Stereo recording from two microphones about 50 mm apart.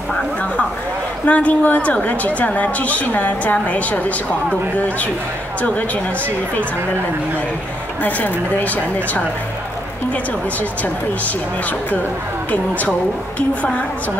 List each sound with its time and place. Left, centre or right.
1.2 s a woman's voice: left
8.0 s a woman's voice: left
12.4 s a woman's voice: left